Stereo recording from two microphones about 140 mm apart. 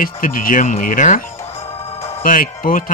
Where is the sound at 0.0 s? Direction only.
80° left; by 1.2 s 65° left (ahead or behind).